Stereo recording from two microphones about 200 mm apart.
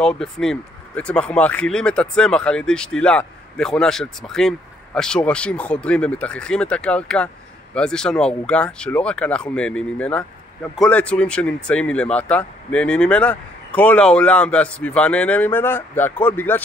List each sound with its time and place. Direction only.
0.0 s speech: 5° left (ahead or behind)